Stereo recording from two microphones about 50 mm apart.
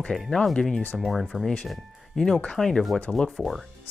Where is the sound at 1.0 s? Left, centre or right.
Centre.